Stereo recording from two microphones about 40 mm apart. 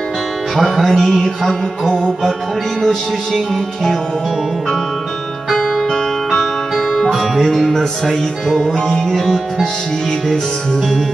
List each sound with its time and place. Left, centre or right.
0.6 s music: centre
5.5 s music: centre
7.2 s music: centre
10.2 s music: centre
10.8 s music: centre